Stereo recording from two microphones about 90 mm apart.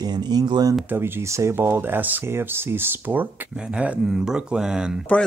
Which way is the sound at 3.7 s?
10° right (ahead or behind).